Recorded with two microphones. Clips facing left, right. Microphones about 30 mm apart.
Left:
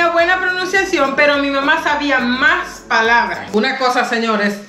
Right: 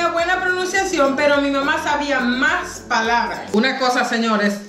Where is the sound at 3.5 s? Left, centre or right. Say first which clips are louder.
Left 2 dB; centre.